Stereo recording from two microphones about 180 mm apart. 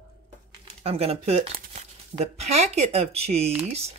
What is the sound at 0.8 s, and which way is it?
Speech, 35° right (ahead or behind).